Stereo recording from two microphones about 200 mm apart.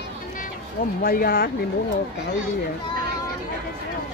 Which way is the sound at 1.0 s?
50° left (ahead or behind).